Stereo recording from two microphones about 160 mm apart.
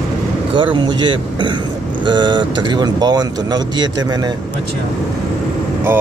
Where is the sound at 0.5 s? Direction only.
30° right (ahead or behind).